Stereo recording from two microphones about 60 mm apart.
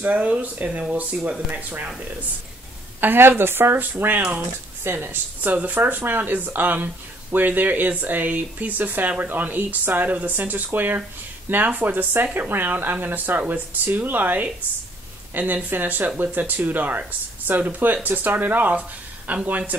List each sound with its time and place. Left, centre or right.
0.0 s speech: right
0.7 s speech: centre
1.6 s speech: right
3.0 s speech: right
4.8 s speech: right